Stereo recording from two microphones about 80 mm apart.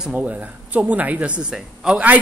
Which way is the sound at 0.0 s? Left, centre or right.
Centre.